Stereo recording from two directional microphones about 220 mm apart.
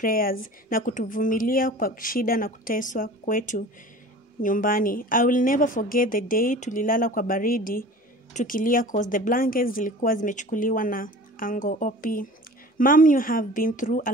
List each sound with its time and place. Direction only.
0.0 s speech: 40° left (ahead or behind)